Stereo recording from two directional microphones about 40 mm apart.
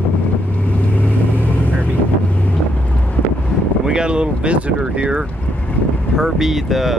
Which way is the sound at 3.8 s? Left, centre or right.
Right.